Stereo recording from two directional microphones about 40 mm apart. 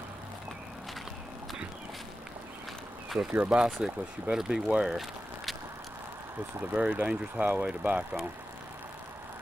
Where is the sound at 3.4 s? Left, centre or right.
Right.